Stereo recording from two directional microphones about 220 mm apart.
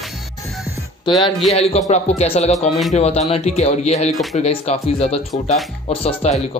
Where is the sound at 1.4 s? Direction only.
30° left (ahead or behind).